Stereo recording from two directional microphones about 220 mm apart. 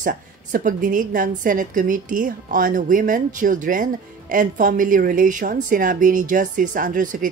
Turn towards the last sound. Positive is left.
turn(degrees=-35)  # may be behind; listen again after turning